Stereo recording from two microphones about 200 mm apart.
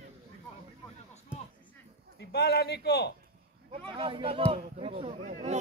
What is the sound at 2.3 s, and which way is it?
Speech, 55° left (ahead or behind).